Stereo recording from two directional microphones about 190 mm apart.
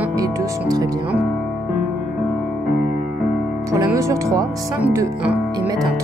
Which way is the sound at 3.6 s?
15° right (ahead or behind).